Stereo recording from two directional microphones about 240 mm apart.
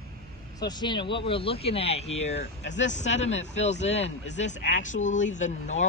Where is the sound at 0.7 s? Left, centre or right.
Centre.